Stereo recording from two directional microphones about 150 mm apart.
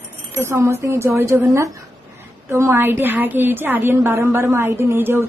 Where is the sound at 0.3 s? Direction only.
20° right (ahead or behind).